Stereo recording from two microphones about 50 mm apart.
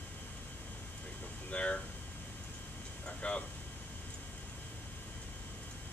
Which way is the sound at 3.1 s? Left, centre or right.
Left.